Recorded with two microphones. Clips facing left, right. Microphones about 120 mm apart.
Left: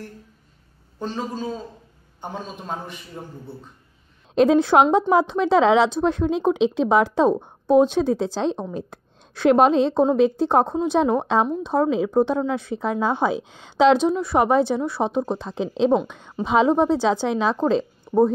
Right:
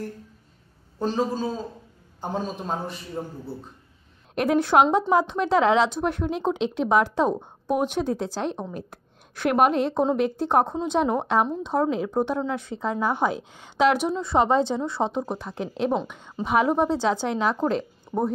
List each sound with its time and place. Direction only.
1.1 s a man's voice: 35° right (ahead or behind)
3.2 s a man's voice: 15° right (ahead or behind)
4.4 s a woman's voice: 15° left (ahead or behind)